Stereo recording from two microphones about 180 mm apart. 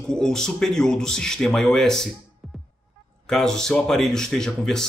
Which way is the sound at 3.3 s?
5° left (ahead or behind).